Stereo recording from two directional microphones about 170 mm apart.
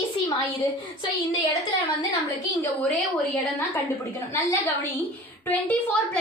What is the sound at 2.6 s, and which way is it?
Speech, centre (ahead or behind).